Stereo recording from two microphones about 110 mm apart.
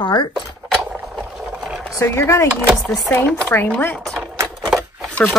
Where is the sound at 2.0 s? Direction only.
25° left (ahead or behind).